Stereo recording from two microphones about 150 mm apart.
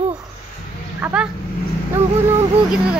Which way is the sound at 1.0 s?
5° right (ahead or behind).